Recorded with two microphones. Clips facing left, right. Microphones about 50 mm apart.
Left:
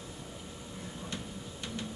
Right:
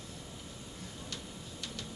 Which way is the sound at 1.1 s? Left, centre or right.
Left.